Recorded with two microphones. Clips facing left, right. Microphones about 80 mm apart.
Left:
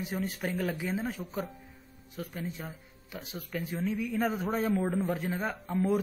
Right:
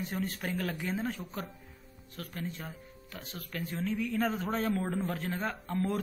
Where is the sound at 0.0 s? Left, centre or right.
Centre.